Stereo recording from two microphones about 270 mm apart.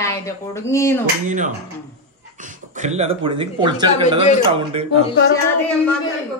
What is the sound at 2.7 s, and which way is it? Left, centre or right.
A man's voice, right.